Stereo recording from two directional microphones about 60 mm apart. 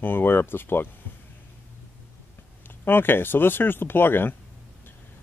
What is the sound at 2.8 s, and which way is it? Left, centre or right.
Speech, left.